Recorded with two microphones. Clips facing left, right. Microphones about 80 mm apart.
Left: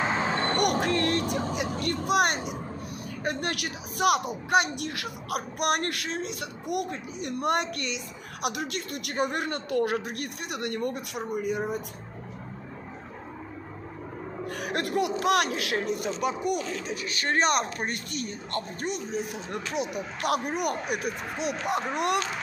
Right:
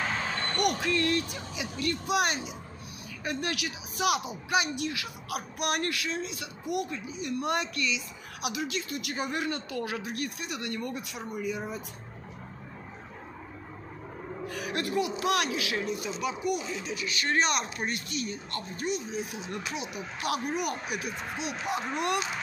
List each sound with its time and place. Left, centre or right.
0.0 s basketball bounce: left
0.6 s music: left
1.5 s vehicle: left
2.0 s a woman's voice: left
14.4 s a sound: left
15.1 s a woman's voice: left
16.5 s speech: centre
16.8 s a woman's voice: left